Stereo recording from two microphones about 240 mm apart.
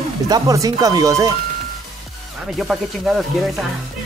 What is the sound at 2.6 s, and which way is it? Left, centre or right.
Speech, centre.